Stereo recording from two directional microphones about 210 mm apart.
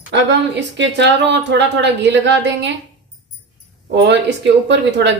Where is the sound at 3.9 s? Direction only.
55° right (ahead or behind).